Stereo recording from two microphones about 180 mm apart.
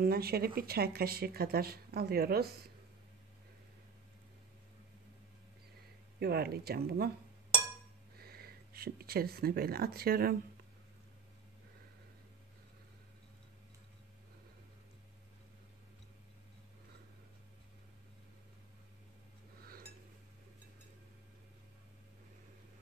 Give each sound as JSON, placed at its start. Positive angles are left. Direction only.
{"t": 0.0, "sound": "speech", "side_deg": -60}
{"t": 6.1, "sound": "speech", "side_deg": -60}
{"t": 8.2, "sound": "speech", "side_deg": -60}
{"t": 19.6, "sound": "a sound", "side_deg": -55}